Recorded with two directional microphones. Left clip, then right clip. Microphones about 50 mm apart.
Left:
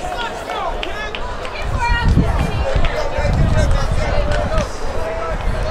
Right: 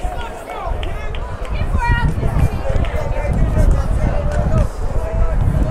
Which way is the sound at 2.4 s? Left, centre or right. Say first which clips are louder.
Left 3 dB; right.